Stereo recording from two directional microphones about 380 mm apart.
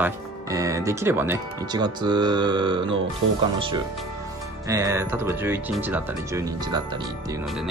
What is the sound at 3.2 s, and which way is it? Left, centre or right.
Speech, right.